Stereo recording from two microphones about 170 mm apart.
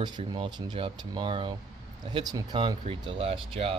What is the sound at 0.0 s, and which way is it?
Speech, 25° right (ahead or behind).